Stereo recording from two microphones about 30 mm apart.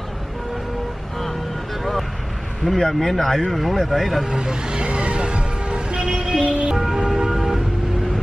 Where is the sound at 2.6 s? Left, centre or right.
Left.